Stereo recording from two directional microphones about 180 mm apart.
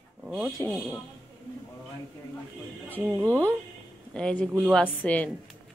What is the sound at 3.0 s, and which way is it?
Speech, 5° right (ahead or behind).